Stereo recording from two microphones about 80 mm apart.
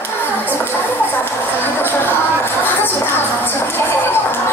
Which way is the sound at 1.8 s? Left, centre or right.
Left.